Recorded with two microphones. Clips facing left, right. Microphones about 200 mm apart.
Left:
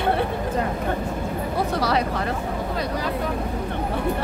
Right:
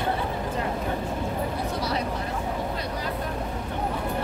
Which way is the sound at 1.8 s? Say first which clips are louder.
Left 5 dB; 90° left.